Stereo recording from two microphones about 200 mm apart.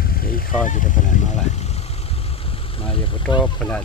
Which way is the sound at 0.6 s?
40° left (ahead or behind).